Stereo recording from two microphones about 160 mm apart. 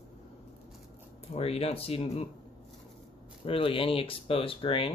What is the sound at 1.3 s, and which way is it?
Speech, 40° left (ahead or behind).